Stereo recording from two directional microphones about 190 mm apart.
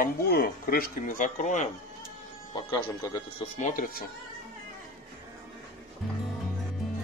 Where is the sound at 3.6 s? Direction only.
45° left (ahead or behind).